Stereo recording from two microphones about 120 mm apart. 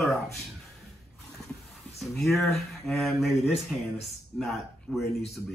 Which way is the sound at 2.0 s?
Centre (ahead or behind).